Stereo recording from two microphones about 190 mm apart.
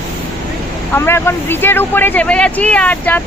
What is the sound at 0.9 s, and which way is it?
Speech, 10° left (ahead or behind).